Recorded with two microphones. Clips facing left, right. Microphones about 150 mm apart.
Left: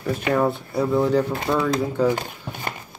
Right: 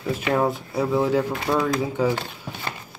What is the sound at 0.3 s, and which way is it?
Speech, 5° right (ahead or behind).